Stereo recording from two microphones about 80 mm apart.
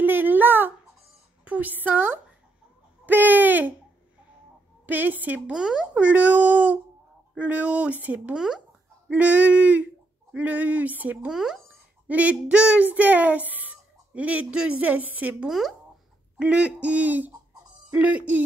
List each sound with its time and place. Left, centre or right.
0.0 s a sound: right
1.4 s a woman's voice: centre
3.1 s a sound: right
4.8 s speech: right
5.5 s speech: centre
8.4 s speech: centre
9.1 s speech: centre
11.3 s speech: centre